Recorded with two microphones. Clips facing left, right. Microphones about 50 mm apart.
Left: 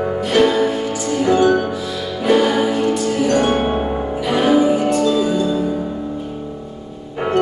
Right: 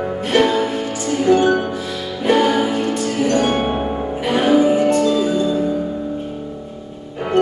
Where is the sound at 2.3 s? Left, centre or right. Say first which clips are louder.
Even; right.